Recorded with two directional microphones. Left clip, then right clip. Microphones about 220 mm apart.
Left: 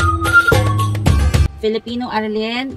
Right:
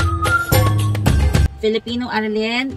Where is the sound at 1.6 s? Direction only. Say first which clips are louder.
Even; 25° left (ahead or behind).